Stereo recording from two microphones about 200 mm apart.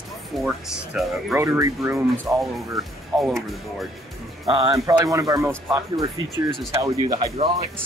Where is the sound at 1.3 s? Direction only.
15° right (ahead or behind).